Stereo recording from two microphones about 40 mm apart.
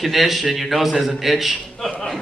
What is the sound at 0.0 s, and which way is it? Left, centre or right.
A man's voice, centre.